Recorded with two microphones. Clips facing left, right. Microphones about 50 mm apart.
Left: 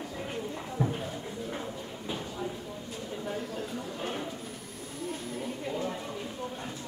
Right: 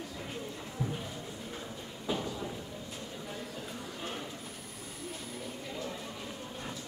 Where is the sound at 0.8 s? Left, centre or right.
Left.